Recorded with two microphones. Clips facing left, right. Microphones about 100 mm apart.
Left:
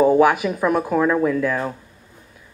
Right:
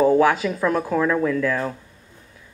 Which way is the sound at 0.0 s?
20° left (ahead or behind).